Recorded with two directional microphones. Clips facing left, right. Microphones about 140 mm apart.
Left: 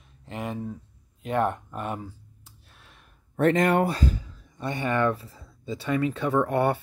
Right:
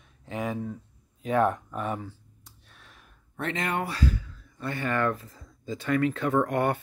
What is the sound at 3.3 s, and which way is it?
Speech, 45° left (ahead or behind).